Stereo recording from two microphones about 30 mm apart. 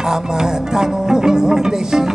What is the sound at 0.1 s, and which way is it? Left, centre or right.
Music, right.